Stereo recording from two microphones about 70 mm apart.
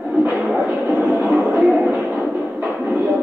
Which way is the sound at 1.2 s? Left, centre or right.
Centre.